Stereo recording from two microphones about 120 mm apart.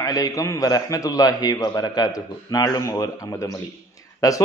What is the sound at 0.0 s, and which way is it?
A man's voice, 30° left (ahead or behind).